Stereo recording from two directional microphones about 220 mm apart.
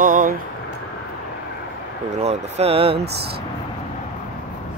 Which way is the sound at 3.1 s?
45° right (ahead or behind).